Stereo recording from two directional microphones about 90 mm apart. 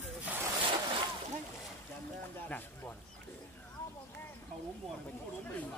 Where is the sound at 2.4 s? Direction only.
20° left (ahead or behind).